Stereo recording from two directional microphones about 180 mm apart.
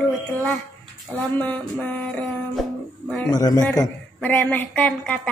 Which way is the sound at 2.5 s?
Centre (ahead or behind).